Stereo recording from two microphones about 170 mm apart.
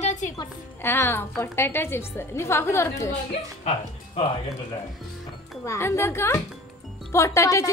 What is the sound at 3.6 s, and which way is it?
Speech, 40° left (ahead or behind).